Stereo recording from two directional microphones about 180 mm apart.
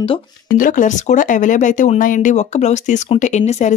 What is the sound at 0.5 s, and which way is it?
Speech, 45° left (ahead or behind).